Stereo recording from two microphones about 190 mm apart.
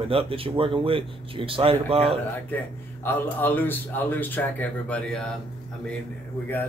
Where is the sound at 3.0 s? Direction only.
10° left (ahead or behind).